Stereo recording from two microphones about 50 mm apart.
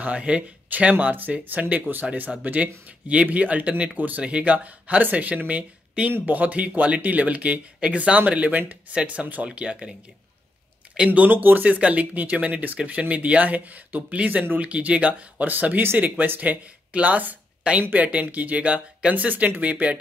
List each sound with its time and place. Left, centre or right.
0.0 s speech: right
11.1 s speech: right